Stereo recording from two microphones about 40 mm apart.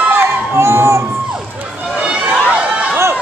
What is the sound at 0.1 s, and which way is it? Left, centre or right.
Crowd, right.